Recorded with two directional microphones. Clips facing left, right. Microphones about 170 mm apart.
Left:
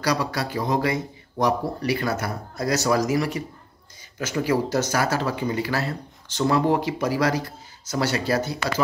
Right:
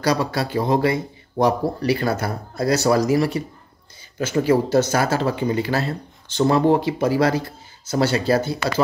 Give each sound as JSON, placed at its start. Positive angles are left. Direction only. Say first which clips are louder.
{"t": 0.0, "sound": "speech", "louder": "right 4 dB", "side_deg": -25}